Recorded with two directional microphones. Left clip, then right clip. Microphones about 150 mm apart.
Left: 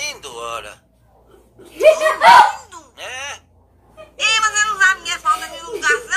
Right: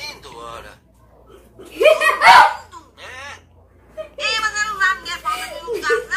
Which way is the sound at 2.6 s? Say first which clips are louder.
Left 5 dB; 35° left (ahead or behind).